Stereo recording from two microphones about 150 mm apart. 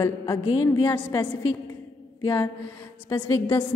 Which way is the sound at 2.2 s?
20° left (ahead or behind).